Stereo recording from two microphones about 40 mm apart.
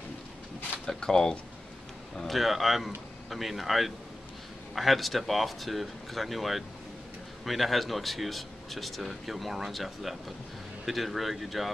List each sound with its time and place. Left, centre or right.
0.8 s speech: centre
2.2 s speech: centre